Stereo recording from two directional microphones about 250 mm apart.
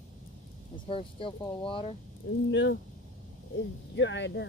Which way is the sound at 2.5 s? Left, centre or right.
Left.